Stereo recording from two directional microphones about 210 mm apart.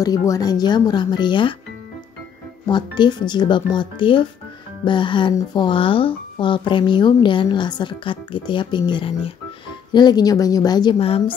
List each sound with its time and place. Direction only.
0.0 s speech: 15° left (ahead or behind)
2.7 s speech: 20° left (ahead or behind)